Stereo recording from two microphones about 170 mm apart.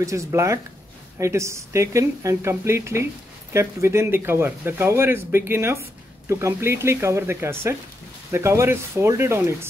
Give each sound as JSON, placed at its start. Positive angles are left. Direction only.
{"t": 0.0, "sound": "speech", "side_deg": -20}